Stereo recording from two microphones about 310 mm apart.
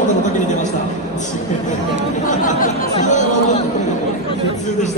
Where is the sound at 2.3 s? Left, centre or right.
Left.